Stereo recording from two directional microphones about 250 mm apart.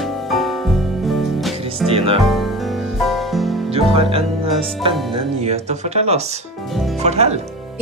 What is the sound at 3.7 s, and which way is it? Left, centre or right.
Music, right.